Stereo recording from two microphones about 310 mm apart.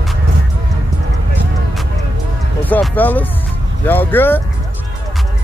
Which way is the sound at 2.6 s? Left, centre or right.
Centre.